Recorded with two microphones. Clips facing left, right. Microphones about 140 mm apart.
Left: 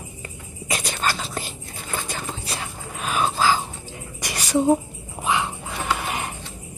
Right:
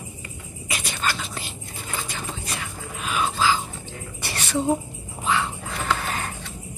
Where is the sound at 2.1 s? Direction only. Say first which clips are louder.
Left 2 dB; 40° left (ahead or behind).